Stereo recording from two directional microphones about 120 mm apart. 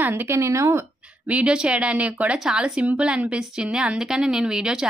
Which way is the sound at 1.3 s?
10° right (ahead or behind).